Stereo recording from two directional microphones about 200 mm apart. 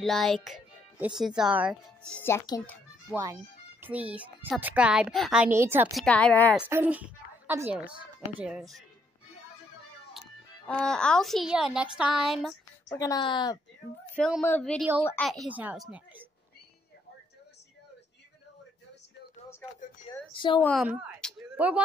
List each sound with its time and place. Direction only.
0.0 s a child's voice: centre (ahead or behind)
2.0 s speech: 10° left (ahead or behind)
3.8 s a woman's voice: 5° right (ahead or behind)
5.9 s speech: 5° left (ahead or behind)
6.5 s a woman's voice: 10° right (ahead or behind)
10.7 s speech: 5° left (ahead or behind)
12.8 s a woman's voice: 15° left (ahead or behind)
14.1 s speech: 5° left (ahead or behind)
15.5 s speech: 5° right (ahead or behind)
20.3 s a woman's voice: 25° left (ahead or behind)
20.8 s a sound: centre (ahead or behind)
21.5 s a woman's voice: 5° right (ahead or behind)